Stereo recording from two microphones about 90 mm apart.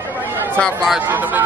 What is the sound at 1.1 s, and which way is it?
Speech, 20° right (ahead or behind).